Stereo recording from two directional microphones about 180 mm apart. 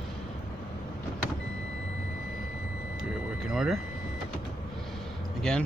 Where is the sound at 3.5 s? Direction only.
Centre (ahead or behind).